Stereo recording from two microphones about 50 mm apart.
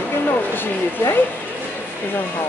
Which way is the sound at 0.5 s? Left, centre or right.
Left.